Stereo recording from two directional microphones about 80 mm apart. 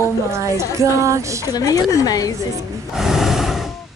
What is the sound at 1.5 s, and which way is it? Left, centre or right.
Speech, left.